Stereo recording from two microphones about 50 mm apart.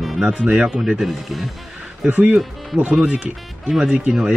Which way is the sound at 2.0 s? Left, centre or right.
Right.